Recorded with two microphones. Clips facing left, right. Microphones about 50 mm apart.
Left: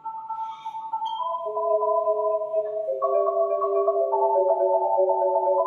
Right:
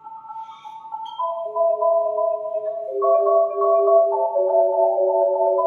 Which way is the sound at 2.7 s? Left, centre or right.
Right.